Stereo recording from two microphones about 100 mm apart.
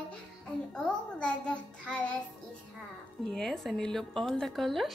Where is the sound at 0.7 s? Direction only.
10° left (ahead or behind).